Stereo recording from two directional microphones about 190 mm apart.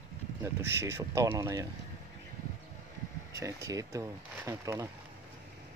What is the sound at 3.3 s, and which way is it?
Speech, 15° right (ahead or behind).